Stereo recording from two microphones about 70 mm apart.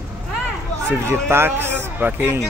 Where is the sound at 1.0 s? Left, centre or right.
Right.